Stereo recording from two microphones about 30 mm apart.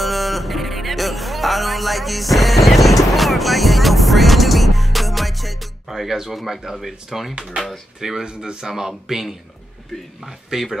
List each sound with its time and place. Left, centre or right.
0.0 s music: centre
5.9 s speech: centre